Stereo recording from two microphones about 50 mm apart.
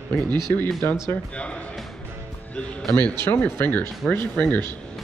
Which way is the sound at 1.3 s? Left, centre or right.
Left.